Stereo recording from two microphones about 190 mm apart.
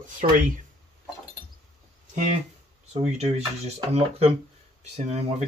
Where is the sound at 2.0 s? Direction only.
45° right (ahead or behind).